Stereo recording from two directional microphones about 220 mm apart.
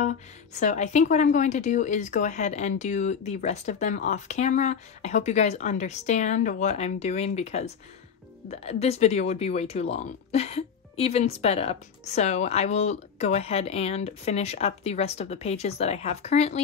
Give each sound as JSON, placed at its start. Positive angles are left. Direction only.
{"t": 0.6, "sound": "speech", "side_deg": 35}